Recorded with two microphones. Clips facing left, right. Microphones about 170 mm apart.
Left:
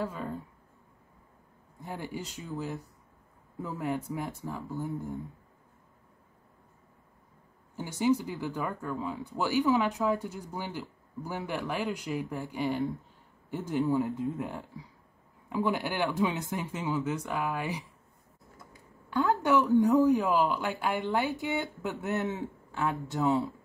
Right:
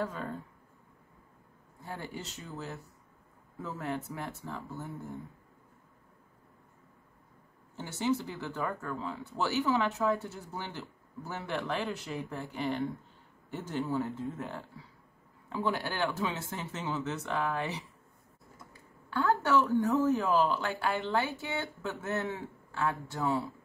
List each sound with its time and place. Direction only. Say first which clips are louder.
0.0 s speech: left 1 dB; 5° left (ahead or behind)
1.8 s speech: left 3 dB; 15° left (ahead or behind)
7.7 s speech: left 4 dB; 15° left (ahead or behind)